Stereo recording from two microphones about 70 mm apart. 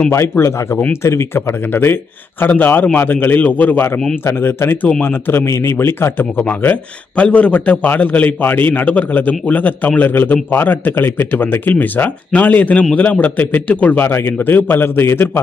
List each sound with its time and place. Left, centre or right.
0.1 s a man's voice: left
14.0 s a man's voice: left